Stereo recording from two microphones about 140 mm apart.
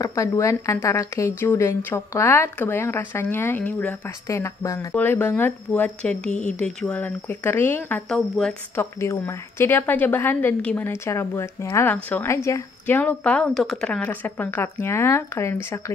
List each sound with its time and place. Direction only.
0.0 s a woman's voice: 20° left (ahead or behind)
8.1 s speech: 5° left (ahead or behind)
8.7 s a woman's voice: 15° left (ahead or behind)